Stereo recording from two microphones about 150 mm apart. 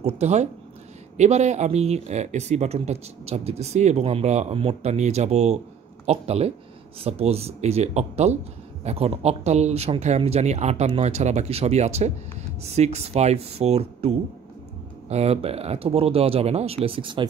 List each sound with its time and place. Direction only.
0.0 s speech: 45° right (ahead or behind)